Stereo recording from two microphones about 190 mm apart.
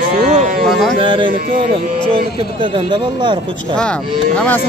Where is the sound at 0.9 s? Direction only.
25° right (ahead or behind).